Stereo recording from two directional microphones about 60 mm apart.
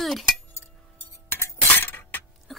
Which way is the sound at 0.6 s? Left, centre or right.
Left.